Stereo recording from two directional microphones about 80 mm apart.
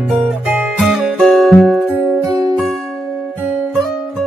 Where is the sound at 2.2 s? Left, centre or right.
Right.